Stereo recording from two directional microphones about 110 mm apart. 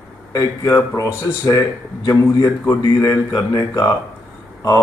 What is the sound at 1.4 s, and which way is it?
Speech, 35° left (ahead or behind).